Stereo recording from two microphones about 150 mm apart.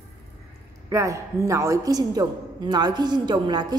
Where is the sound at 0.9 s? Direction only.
20° right (ahead or behind).